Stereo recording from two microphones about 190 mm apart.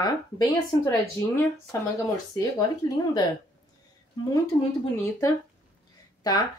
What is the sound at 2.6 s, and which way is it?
Speech, 20° left (ahead or behind).